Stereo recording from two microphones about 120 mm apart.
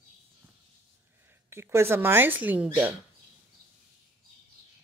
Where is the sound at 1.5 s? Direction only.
20° right (ahead or behind).